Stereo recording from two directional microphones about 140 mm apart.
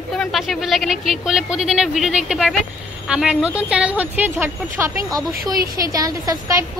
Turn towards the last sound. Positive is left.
turn(degrees=-25)  # may be behind; listen again after turning